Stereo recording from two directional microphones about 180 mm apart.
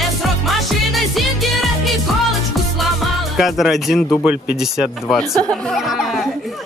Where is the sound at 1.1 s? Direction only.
Centre (ahead or behind).